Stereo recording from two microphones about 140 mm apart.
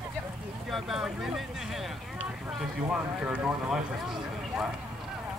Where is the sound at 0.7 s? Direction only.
Centre (ahead or behind).